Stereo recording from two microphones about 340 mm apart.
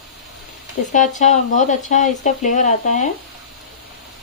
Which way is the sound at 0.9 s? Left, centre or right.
Left.